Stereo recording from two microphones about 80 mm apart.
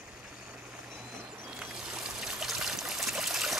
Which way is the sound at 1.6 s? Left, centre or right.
Centre.